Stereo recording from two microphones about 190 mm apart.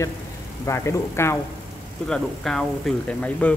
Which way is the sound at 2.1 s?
5° left (ahead or behind).